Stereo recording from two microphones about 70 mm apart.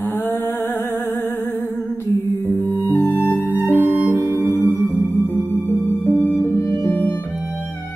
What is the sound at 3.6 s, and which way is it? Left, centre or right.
Music, right.